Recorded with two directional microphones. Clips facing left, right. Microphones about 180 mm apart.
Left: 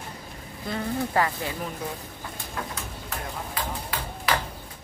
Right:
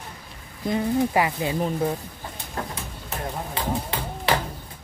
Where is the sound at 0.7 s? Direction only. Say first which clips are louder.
Right 6 dB; 15° right (ahead or behind).